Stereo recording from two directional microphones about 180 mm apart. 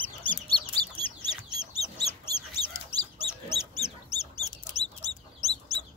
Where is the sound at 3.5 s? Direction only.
35° left (ahead or behind).